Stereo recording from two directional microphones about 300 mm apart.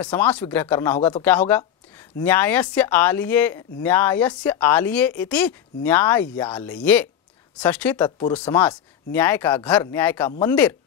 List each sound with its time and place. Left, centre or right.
0.0 s speech: centre